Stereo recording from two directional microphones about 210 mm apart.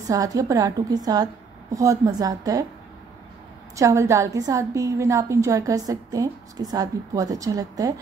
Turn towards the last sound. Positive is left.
turn(degrees=-15)  # may be behind; listen again after turning